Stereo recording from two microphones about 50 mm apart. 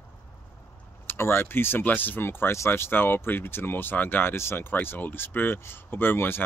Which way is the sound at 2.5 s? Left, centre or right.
Left.